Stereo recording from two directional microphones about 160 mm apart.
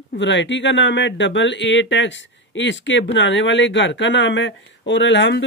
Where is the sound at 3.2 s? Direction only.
90° left.